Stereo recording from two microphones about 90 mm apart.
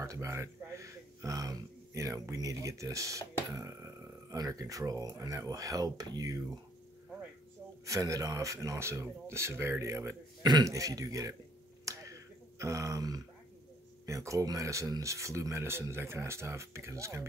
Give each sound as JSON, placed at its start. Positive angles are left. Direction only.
{"t": 0.0, "sound": "speech", "side_deg": -35}
{"t": 7.8, "sound": "speech", "side_deg": -35}
{"t": 10.4, "sound": "a man's voice", "side_deg": -50}
{"t": 10.7, "sound": "speech", "side_deg": -40}
{"t": 11.8, "sound": "finger snapping", "side_deg": -40}
{"t": 12.5, "sound": "speech", "side_deg": -35}